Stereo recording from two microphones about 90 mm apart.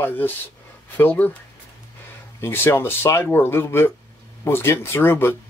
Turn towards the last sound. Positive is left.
turn(degrees=25)  # may be behind; listen again after turning